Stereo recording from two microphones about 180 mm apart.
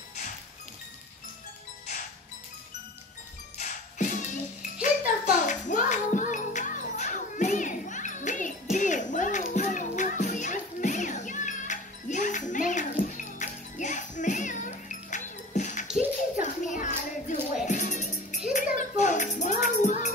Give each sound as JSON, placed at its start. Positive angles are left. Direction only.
{"t": 3.5, "sound": "music", "side_deg": 40}